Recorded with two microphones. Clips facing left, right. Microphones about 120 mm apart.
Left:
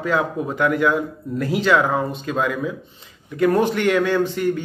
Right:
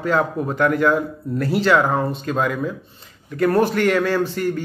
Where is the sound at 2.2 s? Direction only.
40° right (ahead or behind).